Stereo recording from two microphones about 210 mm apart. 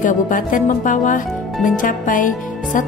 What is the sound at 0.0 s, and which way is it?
Speech, 40° left (ahead or behind).